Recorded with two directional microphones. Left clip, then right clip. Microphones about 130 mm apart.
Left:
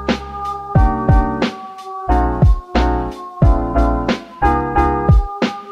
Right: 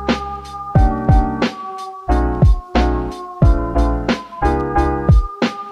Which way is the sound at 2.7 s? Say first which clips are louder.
Even; centre (ahead or behind).